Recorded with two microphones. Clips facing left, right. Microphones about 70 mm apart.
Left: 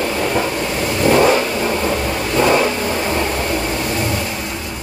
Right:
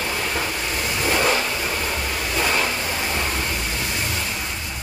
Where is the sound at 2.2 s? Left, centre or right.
Left.